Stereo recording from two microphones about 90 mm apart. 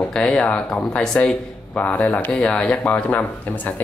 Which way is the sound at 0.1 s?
10° left (ahead or behind).